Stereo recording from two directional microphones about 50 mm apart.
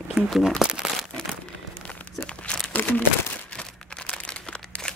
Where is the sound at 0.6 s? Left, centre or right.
Centre.